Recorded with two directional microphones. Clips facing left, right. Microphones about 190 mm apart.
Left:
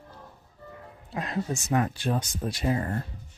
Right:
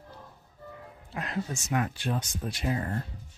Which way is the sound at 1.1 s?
30° left (ahead or behind).